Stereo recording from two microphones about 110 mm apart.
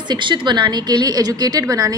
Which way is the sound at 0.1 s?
45° right (ahead or behind).